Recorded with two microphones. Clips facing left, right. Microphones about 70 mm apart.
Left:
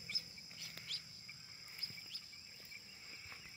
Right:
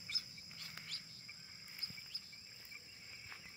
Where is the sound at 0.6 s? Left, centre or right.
Right.